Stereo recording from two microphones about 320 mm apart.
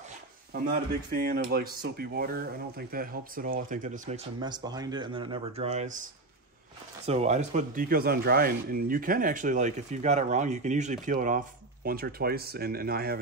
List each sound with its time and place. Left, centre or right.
1.1 s speech: right
7.1 s speech: right